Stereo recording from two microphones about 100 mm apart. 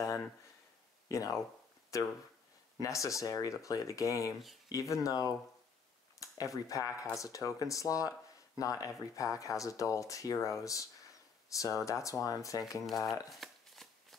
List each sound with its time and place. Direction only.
1.0 s speech: 35° left (ahead or behind)
2.8 s speech: 35° left (ahead or behind)
12.8 s speech: centre (ahead or behind)
13.3 s chopping: centre (ahead or behind)